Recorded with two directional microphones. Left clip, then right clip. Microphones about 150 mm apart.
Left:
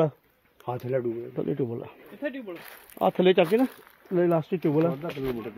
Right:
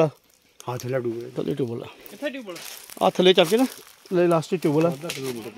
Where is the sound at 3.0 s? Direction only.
50° right (ahead or behind).